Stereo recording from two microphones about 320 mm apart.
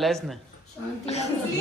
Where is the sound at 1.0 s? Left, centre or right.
Centre.